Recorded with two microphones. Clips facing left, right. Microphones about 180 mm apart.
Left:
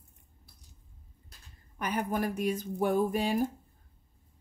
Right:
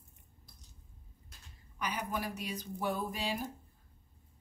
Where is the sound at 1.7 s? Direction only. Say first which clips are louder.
Left 6 dB; 50° left (ahead or behind).